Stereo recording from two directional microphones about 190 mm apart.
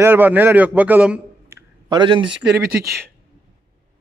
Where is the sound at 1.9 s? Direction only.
25° right (ahead or behind).